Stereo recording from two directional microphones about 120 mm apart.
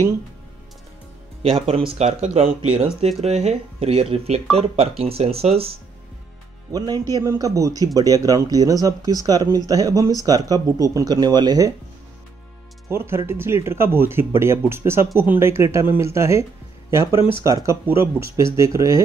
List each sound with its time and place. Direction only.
1.4 s speech: 55° right (ahead or behind)
6.7 s speech: 30° right (ahead or behind)
12.9 s speech: 20° right (ahead or behind)